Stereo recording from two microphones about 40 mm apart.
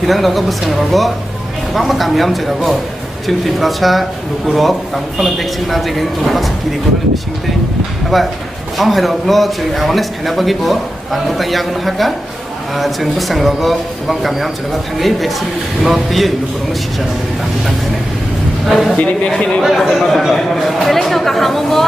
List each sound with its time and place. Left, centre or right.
0.0 s a man's voice: centre
8.1 s a man's voice: centre
18.7 s a man's voice: centre
19.2 s a man's voice: left
19.7 s a man's voice: centre